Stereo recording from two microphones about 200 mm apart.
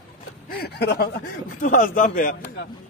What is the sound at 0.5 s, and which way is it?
Speech, 50° left (ahead or behind).